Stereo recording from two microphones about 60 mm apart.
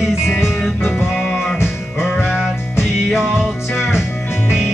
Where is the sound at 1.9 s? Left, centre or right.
Centre.